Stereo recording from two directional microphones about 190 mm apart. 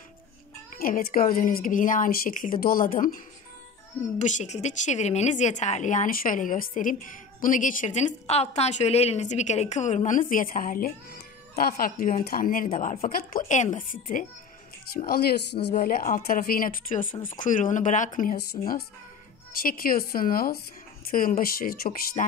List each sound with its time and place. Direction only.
0.7 s speech: 50° left (ahead or behind)
4.2 s a woman's voice: 40° left (ahead or behind)
13.1 s speech: 50° left (ahead or behind)
15.0 s speech: 55° left (ahead or behind)
15.7 s speech: 45° left (ahead or behind)
19.6 s speech: 50° left (ahead or behind)